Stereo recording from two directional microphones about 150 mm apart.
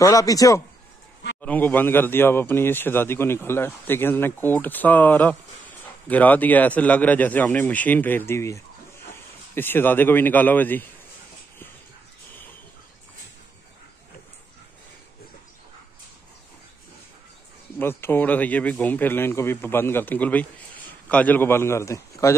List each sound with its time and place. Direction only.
0.0 s a man's voice: 20° left (ahead or behind)
1.4 s a man's voice: 10° left (ahead or behind)
17.7 s a man's voice: 15° left (ahead or behind)